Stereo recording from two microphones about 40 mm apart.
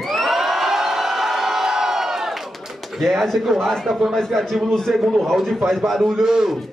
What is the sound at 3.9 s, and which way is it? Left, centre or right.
Speech, centre.